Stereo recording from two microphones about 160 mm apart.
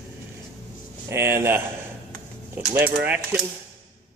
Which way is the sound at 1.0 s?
15° right (ahead or behind).